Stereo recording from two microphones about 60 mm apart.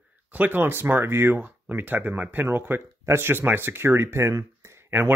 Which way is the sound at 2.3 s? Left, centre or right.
Right.